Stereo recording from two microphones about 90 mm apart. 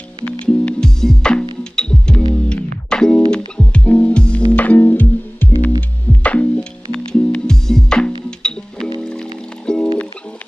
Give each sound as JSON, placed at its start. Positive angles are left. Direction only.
{"t": 0.2, "sound": "music", "side_deg": 10}